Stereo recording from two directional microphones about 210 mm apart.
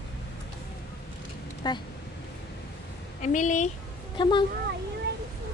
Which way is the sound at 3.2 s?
35° left (ahead or behind).